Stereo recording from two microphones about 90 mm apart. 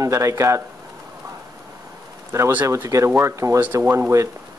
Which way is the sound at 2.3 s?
35° right (ahead or behind).